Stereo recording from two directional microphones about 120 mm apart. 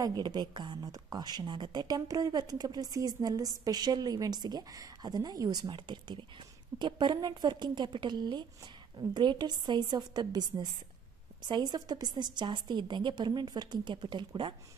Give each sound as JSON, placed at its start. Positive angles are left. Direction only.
{"t": 0.0, "sound": "a woman's voice", "side_deg": -35}